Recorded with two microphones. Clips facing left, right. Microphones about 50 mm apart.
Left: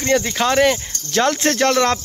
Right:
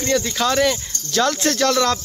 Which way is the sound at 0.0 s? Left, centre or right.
Left.